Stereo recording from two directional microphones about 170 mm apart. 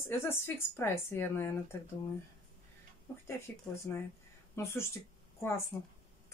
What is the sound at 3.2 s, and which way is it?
Speech, 15° left (ahead or behind).